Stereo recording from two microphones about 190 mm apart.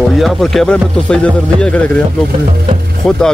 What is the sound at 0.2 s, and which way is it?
Speech, centre (ahead or behind).